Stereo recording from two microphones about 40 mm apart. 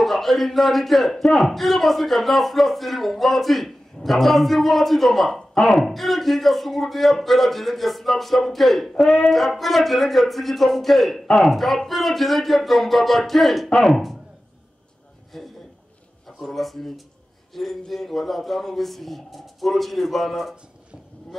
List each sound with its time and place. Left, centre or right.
0.0 s speech: centre
5.5 s speech: left
5.8 s speech: centre
15.3 s a man's voice: centre